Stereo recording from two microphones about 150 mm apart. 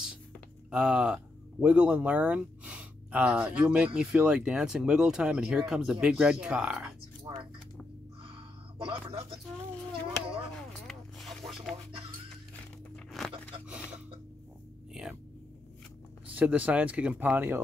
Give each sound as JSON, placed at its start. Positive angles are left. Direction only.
{"t": 0.7, "sound": "speech", "side_deg": -5}
{"t": 7.3, "sound": "dishes", "side_deg": -35}
{"t": 8.2, "sound": "music", "side_deg": -35}
{"t": 10.5, "sound": "a sound", "side_deg": 0}
{"t": 12.9, "sound": "a sound", "side_deg": 0}
{"t": 16.3, "sound": "speech", "side_deg": -10}